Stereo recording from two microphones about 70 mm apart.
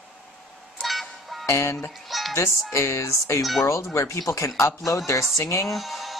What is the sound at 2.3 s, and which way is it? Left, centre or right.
Speech, left.